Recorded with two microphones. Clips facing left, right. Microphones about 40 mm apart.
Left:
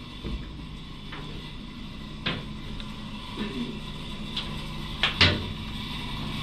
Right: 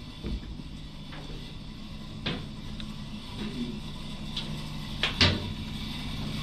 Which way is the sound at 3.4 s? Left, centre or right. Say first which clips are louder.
Left 3 dB; left.